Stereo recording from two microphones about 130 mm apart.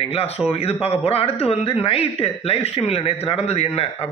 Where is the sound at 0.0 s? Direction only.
50° left (ahead or behind).